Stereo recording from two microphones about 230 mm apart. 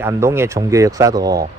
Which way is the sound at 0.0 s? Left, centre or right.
Centre.